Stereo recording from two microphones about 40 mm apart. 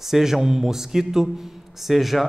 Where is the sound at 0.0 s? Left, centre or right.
Centre.